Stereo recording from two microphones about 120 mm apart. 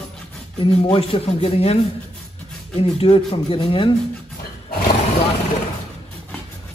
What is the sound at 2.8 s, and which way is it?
Speech, 55° left (ahead or behind).